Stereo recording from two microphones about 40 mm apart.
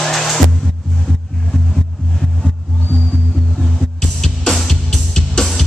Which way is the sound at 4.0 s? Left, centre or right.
Centre.